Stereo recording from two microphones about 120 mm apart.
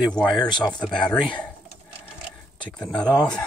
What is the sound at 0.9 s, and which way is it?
Speech, 5° left (ahead or behind).